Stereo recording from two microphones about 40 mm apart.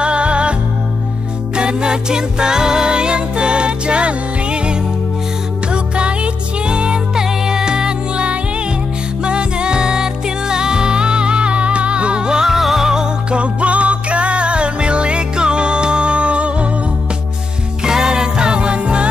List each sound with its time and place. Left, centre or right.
0.0 s music: right
13.4 s music: right
17.8 s music: centre